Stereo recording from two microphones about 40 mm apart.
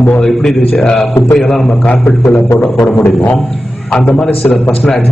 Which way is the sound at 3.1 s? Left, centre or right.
Left.